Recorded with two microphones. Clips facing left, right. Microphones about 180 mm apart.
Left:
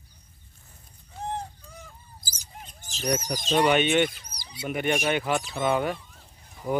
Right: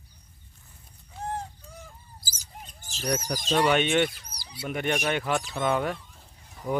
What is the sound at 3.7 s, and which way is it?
Speech, centre (ahead or behind).